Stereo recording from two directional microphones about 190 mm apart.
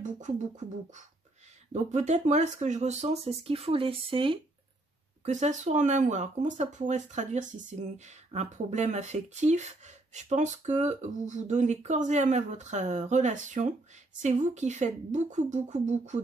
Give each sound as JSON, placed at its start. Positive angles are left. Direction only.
{"t": 0.0, "sound": "speech", "side_deg": -40}
{"t": 5.2, "sound": "speech", "side_deg": -40}